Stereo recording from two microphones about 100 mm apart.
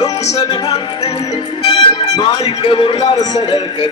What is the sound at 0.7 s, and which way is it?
Music, 75° left (ahead or behind).